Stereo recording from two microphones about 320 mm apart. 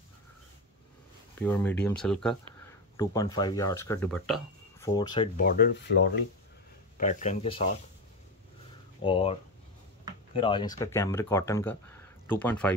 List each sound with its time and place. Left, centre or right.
1.4 s speech: centre
5.4 s speech: left
9.0 s speech: centre